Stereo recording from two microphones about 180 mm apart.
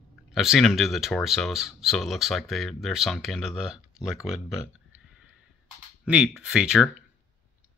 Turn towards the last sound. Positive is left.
turn(degrees=-5)  # may be behind; listen again after turning